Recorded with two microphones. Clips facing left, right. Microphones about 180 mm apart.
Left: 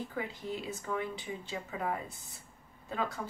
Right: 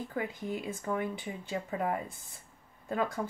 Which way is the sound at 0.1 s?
50° right (ahead or behind).